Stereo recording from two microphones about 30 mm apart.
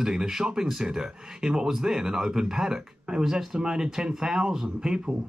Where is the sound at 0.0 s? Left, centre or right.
Centre.